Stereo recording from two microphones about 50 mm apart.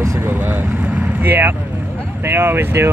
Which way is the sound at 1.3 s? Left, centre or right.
Right.